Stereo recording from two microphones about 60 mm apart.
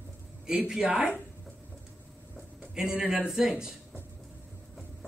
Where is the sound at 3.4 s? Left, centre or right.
Centre.